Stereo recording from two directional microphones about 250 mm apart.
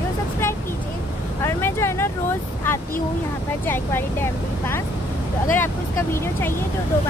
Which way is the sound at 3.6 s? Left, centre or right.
Centre.